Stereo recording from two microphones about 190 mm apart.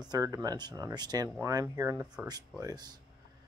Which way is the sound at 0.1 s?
20° right (ahead or behind).